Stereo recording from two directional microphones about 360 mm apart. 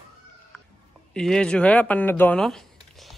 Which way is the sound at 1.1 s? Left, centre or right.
Centre.